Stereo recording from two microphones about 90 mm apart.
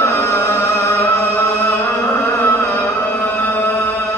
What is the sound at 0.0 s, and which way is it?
Music, 30° left (ahead or behind).